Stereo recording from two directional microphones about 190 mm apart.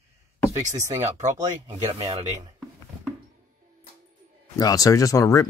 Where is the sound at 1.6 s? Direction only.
15° right (ahead or behind).